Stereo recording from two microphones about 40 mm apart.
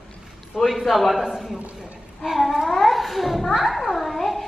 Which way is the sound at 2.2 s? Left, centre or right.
Centre.